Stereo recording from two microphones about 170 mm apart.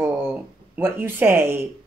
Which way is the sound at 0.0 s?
15° right (ahead or behind).